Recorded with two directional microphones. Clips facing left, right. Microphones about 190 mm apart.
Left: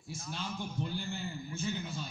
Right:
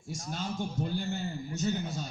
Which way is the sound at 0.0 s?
45° right (ahead or behind).